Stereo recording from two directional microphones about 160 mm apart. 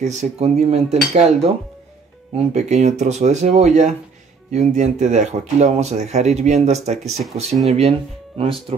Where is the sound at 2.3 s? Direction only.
45° right (ahead or behind).